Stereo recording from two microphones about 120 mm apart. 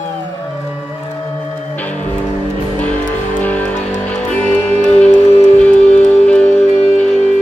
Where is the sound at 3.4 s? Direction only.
10° left (ahead or behind).